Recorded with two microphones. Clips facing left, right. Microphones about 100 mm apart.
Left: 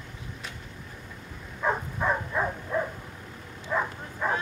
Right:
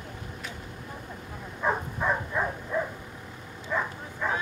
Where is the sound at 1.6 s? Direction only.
Centre (ahead or behind).